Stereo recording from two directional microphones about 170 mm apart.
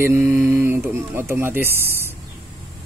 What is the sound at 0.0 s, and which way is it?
Speech, 15° right (ahead or behind).